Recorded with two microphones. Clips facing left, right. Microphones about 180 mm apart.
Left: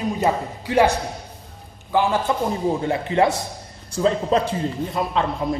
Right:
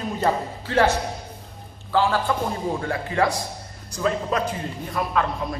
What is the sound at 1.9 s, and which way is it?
A man's voice, 20° left (ahead or behind).